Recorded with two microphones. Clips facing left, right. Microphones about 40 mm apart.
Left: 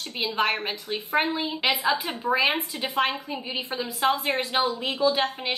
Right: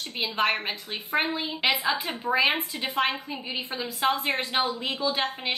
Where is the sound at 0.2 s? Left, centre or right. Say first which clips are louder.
Left 1 dB; centre.